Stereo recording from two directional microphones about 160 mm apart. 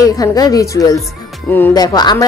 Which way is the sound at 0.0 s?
20° left (ahead or behind).